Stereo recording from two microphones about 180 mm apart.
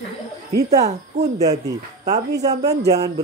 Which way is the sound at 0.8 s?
40° right (ahead or behind).